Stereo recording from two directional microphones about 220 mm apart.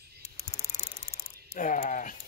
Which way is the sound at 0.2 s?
30° left (ahead or behind).